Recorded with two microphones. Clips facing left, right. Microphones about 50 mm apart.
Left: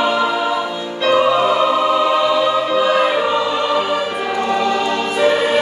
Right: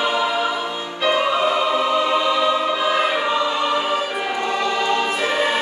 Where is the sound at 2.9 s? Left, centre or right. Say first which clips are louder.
Left 4 dB; centre.